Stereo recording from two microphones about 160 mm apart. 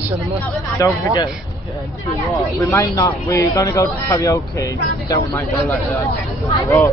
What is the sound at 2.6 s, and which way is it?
Speech, 20° left (ahead or behind).